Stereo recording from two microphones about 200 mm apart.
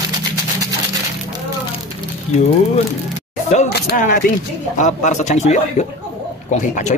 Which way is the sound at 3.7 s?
45° left (ahead or behind).